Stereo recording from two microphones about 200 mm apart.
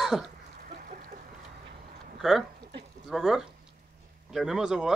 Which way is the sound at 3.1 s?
5° right (ahead or behind).